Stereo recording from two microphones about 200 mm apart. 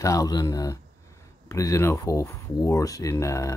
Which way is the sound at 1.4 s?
15° left (ahead or behind).